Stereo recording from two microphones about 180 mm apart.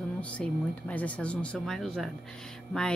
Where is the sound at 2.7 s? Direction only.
5° left (ahead or behind).